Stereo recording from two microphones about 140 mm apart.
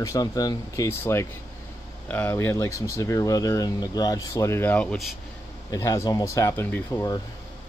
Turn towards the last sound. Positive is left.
turn(degrees=20)  # may be behind; listen again after turning